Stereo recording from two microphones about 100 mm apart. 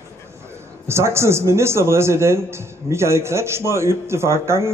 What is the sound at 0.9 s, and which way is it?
A man's voice, 25° right (ahead or behind).